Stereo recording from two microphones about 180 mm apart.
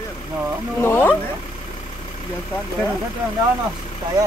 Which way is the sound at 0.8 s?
10° left (ahead or behind).